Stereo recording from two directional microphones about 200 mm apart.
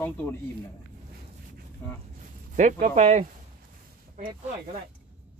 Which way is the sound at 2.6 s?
35° right (ahead or behind).